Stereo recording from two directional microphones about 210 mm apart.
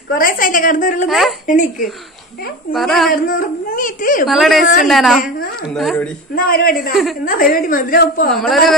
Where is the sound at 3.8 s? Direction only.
40° left (ahead or behind).